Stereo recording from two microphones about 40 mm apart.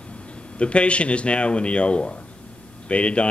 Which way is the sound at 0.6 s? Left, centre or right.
Left.